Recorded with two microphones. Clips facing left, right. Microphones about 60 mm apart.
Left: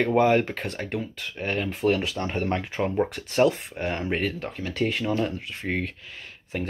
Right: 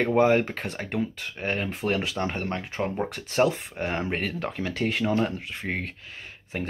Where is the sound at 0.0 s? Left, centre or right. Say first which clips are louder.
Even; centre.